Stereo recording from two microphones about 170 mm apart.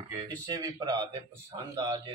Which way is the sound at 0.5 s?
25° right (ahead or behind).